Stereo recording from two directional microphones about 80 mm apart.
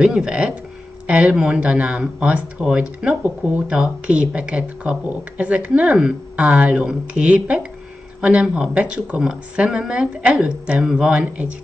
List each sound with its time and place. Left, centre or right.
0.0 s a woman's voice: centre
9.2 s a woman's voice: centre